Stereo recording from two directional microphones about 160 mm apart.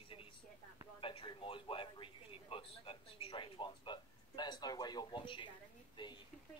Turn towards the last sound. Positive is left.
turn(degrees=30)  # may be behind; listen again after turning